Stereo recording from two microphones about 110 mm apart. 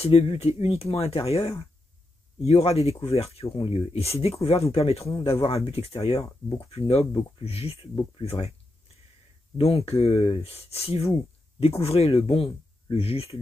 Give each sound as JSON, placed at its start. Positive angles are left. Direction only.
{"t": 0.0, "sound": "speech", "side_deg": 65}
{"t": 9.6, "sound": "speech", "side_deg": 65}